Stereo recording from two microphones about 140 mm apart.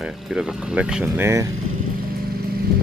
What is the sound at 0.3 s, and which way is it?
Speech, 5° right (ahead or behind).